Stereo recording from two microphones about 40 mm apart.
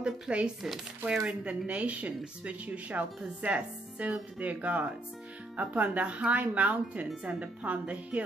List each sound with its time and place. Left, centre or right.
0.0 s speech: right